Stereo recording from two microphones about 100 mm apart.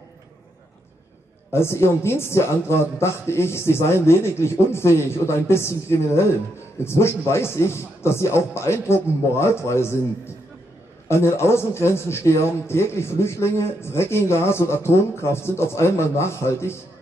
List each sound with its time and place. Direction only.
1.5 s a man's voice: 25° left (ahead or behind)
11.1 s a man's voice: 25° left (ahead or behind)